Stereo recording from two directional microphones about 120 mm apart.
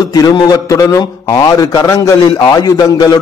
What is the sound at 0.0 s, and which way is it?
A man's voice, 35° left (ahead or behind).